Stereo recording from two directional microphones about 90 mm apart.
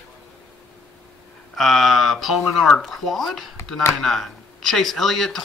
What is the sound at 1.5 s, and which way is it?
Speech, centre (ahead or behind).